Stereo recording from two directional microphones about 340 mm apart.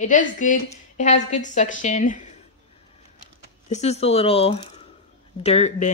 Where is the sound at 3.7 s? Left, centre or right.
Centre.